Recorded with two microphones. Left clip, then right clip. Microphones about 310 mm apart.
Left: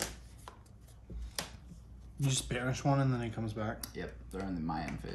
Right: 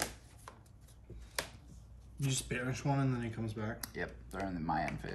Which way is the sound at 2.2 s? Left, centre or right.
Left.